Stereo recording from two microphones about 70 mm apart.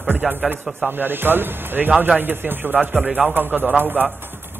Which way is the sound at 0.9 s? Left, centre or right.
Right.